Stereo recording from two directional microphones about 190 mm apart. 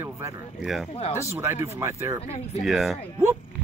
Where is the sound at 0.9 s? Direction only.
30° left (ahead or behind).